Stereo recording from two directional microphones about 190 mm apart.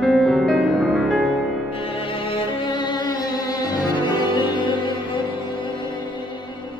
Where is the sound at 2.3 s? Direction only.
25° left (ahead or behind).